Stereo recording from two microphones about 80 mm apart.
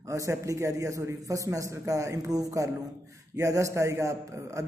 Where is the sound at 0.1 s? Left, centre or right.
Right.